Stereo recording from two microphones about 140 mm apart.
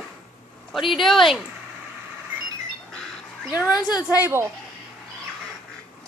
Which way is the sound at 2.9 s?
5° left (ahead or behind).